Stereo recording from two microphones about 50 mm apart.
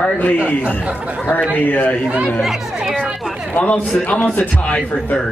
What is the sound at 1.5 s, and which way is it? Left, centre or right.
Speech, left.